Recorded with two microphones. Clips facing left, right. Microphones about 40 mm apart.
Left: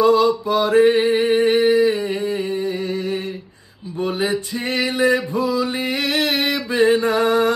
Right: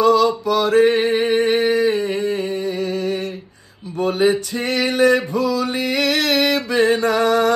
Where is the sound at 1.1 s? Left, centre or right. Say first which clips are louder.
Even; right.